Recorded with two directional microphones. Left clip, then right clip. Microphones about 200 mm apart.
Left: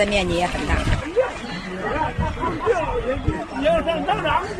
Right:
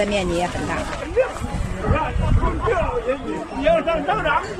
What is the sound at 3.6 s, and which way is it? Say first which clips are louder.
Speech: right 2 dB; 50° left (ahead or behind).